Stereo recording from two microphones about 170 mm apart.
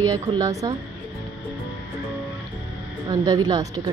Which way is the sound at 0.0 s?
20° right (ahead or behind).